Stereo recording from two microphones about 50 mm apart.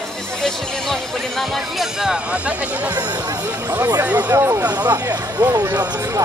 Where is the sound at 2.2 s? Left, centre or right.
Right.